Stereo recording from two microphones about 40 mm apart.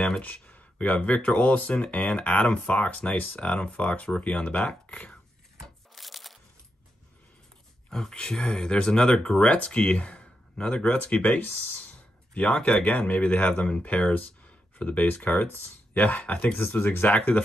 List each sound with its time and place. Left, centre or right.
0.2 s speech: left
5.9 s a sound: centre
7.9 s speech: centre
9.4 s speech: left
11.3 s speech: left
12.6 s speech: left
13.6 s speech: left
14.1 s a sound: left
15.1 s speech: left
16.8 s speech: left